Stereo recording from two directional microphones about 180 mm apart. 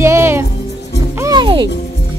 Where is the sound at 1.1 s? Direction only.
20° right (ahead or behind).